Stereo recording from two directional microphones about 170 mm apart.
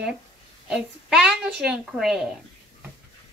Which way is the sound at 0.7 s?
5° right (ahead or behind).